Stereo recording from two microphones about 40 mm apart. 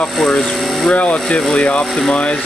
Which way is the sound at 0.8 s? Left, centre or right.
Left.